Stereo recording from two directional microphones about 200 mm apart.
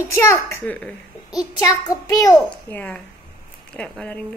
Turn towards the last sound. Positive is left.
turn(degrees=5)  # may be behind; listen again after turning